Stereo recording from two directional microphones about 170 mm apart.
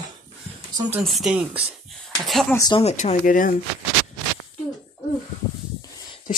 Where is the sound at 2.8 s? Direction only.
40° left (ahead or behind).